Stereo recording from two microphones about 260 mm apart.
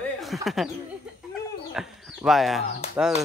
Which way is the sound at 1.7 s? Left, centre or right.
Centre.